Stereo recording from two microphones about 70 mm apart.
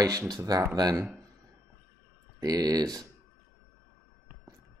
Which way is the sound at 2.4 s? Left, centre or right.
Right.